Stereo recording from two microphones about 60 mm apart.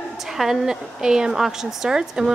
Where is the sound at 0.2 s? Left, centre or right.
Centre.